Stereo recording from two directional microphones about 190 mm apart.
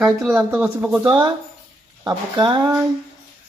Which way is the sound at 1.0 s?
25° right (ahead or behind).